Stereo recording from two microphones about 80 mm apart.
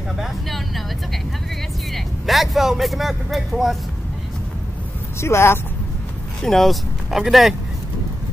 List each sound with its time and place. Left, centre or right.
0.2 s speech: centre
5.2 s speech: left
6.4 s speech: centre